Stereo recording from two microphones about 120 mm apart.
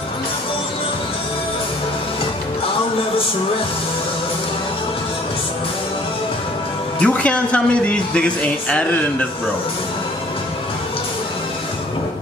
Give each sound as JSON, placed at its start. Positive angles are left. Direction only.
{"t": 7.0, "sound": "a man's voice", "side_deg": 10}